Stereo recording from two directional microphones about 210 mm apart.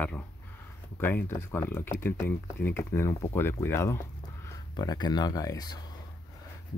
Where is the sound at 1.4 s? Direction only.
10° left (ahead or behind).